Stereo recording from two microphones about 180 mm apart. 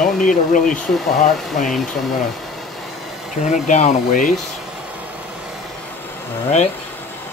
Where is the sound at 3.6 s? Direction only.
40° left (ahead or behind).